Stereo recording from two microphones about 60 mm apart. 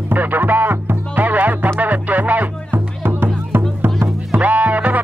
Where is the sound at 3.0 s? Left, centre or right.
Right.